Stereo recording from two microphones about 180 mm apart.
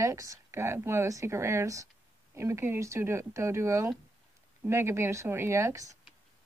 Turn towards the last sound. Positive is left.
turn(degrees=-15)  # may be behind; listen again after turning